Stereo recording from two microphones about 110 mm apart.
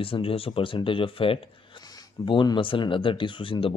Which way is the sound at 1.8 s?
40° left (ahead or behind).